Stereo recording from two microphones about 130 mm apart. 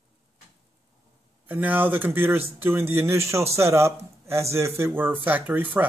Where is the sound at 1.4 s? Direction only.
15° right (ahead or behind).